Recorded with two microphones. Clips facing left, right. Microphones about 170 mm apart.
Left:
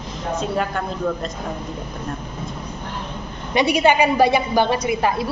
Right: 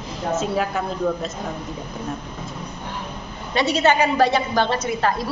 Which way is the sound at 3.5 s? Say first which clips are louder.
Left 2 dB; 15° left (ahead or behind).